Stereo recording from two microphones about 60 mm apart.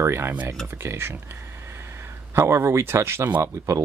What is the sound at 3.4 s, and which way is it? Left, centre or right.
Speech, right.